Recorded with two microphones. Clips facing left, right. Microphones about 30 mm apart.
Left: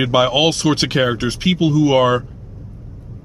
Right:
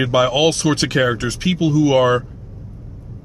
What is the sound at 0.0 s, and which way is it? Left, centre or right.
A man's voice, centre.